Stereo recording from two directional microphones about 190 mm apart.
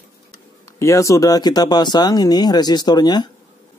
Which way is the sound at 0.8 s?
15° left (ahead or behind).